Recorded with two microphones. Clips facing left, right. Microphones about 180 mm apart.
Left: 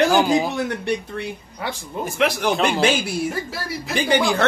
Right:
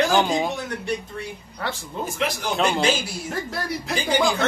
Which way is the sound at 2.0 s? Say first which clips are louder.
Left 7 dB; 65° left (ahead or behind).